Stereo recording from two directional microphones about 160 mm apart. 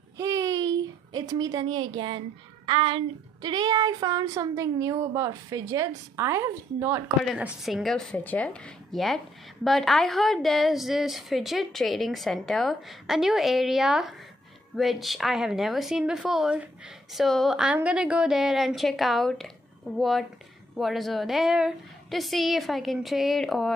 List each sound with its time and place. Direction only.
0.2 s a woman's voice: 20° right (ahead or behind)
7.6 s a woman's voice: centre (ahead or behind)